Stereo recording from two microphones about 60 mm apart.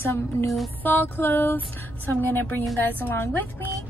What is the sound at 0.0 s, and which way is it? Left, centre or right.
Speech, left.